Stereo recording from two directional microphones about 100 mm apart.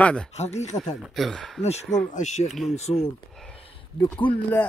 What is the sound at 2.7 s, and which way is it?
Speech, 90° left.